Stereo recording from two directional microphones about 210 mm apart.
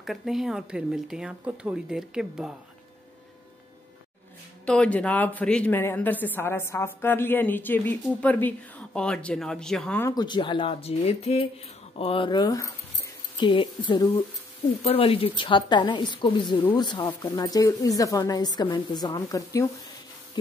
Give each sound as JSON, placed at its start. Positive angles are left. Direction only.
{"t": 0.0, "sound": "speech", "side_deg": 0}
{"t": 4.6, "sound": "a woman's voice", "side_deg": 5}